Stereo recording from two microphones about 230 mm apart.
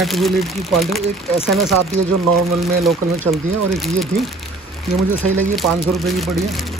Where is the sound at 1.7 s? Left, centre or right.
Right.